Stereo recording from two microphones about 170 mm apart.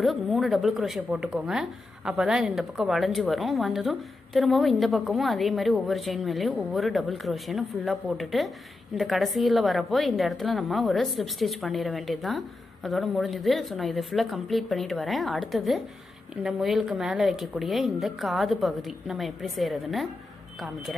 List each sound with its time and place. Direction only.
0.0 s speech: centre (ahead or behind)